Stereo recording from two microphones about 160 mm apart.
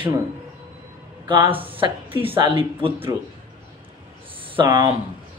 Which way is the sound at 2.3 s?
30° right (ahead or behind).